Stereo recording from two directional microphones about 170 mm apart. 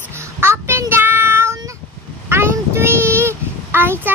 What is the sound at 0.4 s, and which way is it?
Child singing, 15° right (ahead or behind).